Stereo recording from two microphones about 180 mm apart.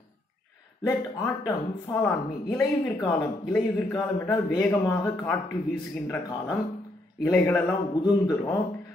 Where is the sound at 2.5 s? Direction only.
20° left (ahead or behind).